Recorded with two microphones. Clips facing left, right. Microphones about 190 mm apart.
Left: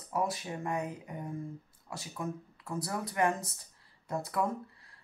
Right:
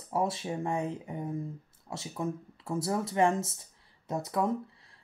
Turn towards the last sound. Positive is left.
turn(degrees=-20)  # may be behind; listen again after turning